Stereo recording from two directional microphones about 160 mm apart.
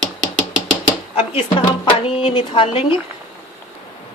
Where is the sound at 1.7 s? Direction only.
35° left (ahead or behind).